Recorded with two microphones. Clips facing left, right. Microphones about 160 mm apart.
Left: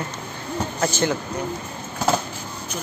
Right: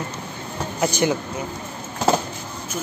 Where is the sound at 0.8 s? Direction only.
15° right (ahead or behind).